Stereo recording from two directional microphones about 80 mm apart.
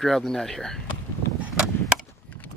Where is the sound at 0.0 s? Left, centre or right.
Centre.